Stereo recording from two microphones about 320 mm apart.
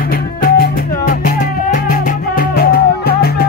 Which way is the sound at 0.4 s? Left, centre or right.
Left.